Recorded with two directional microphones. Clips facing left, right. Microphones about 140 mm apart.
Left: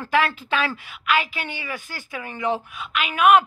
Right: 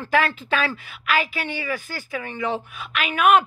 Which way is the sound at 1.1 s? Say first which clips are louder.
Even; 40° right (ahead or behind).